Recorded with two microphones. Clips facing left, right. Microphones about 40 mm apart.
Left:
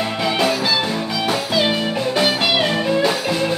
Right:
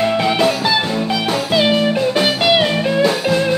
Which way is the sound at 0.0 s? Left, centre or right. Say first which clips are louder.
Right 4 dB; centre.